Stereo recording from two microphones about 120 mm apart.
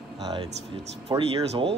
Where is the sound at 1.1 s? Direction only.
40° right (ahead or behind).